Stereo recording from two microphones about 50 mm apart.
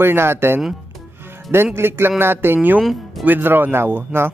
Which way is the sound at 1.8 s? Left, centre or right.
Right.